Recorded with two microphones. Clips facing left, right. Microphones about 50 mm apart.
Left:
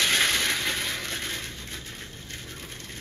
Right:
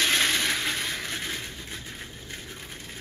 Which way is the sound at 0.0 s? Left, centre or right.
Centre.